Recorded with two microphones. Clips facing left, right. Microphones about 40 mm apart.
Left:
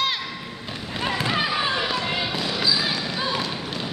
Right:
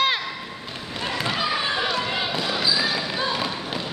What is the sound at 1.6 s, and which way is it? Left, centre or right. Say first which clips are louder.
Basketball bounce: even; centre.